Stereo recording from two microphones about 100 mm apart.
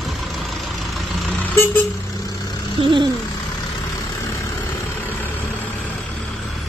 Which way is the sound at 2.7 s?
55° right (ahead or behind).